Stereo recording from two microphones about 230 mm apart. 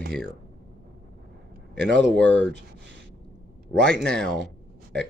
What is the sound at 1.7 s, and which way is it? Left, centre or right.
A man's voice, right.